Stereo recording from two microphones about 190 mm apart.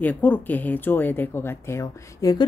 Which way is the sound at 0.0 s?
10° left (ahead or behind).